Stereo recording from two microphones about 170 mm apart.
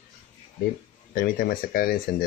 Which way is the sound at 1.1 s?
60° left (ahead or behind).